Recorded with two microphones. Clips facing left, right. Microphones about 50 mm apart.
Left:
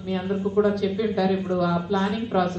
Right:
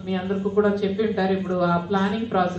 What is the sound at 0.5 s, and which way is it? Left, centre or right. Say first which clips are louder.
Speech: right 1 dB; centre.